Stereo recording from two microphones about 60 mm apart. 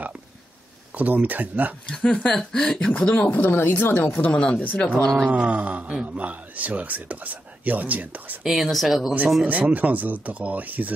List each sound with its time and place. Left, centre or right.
0.9 s speech: right
1.9 s speech: centre
3.3 s speech: left
4.3 s speech: centre
5.2 s speech: right
8.5 s speech: centre
9.4 s speech: right